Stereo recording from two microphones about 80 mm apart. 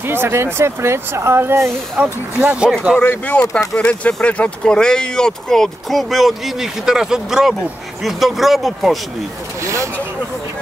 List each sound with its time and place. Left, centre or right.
0.0 s speech: right
2.0 s speech: centre
3.0 s speech: centre
9.6 s speech: right